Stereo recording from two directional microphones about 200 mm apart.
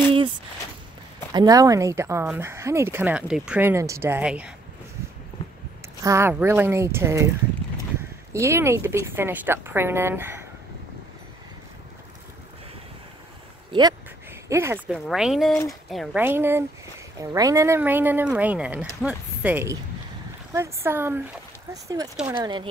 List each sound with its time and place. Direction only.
1.3 s speech: 20° right (ahead or behind)
6.0 s speech: 15° right (ahead or behind)
8.3 s speech: 15° right (ahead or behind)
13.7 s a sound: 20° right (ahead or behind)
15.0 s speech: centre (ahead or behind)
16.2 s speech: 10° right (ahead or behind)